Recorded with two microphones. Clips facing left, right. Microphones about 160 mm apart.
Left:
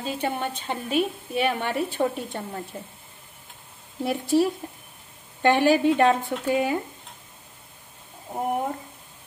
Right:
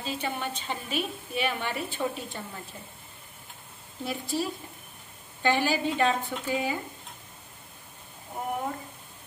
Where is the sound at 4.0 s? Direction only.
65° left (ahead or behind).